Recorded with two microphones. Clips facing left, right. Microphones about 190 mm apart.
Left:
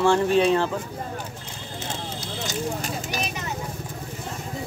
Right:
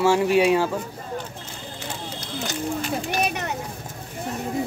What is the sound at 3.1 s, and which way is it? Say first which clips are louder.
Vehicle: right 5 dB; 55° right (ahead or behind).